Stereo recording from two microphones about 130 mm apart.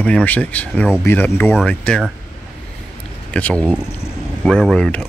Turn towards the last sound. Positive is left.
turn(degrees=5)  # may be behind; listen again after turning